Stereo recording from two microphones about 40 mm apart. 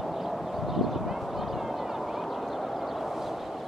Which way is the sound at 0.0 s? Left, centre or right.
Centre.